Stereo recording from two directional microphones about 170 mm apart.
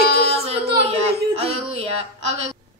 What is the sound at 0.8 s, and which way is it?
Speech, 35° right (ahead or behind).